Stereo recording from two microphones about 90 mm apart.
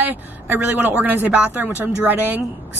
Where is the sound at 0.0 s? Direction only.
20° right (ahead or behind).